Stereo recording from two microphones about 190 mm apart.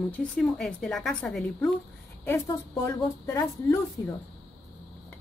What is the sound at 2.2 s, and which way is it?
Speech, 15° left (ahead or behind).